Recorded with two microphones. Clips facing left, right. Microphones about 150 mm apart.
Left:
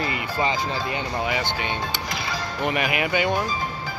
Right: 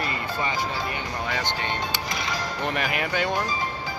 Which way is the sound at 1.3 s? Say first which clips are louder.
Left 2 dB; 5° left (ahead or behind).